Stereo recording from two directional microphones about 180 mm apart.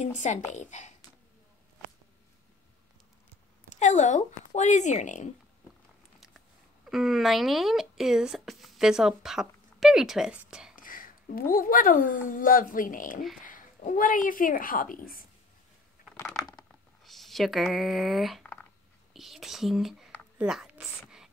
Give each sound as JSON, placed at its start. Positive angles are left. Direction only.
{"t": 0.0, "sound": "speech", "side_deg": 40}
{"t": 3.6, "sound": "speech", "side_deg": 40}
{"t": 6.1, "sound": "biting", "side_deg": 0}
{"t": 6.9, "sound": "speech", "side_deg": 0}
{"t": 10.8, "sound": "speech", "side_deg": 50}
{"t": 16.2, "sound": "a sound", "side_deg": 5}
{"t": 19.1, "sound": "speech", "side_deg": 0}
{"t": 20.3, "sound": "a sound", "side_deg": -5}